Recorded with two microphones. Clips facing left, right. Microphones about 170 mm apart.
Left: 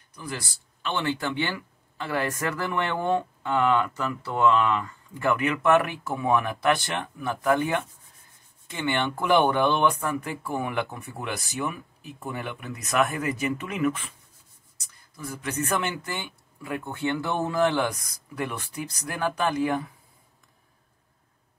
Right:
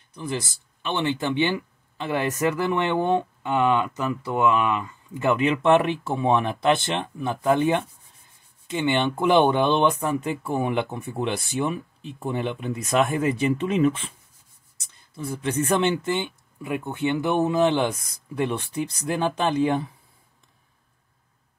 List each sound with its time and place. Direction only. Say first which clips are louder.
0.1 s speech: right 6 dB; 20° right (ahead or behind)